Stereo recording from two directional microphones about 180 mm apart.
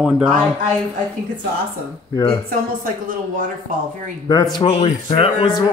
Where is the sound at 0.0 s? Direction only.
5° right (ahead or behind).